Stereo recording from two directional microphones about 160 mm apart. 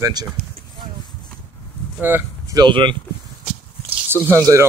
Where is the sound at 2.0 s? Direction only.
10° right (ahead or behind).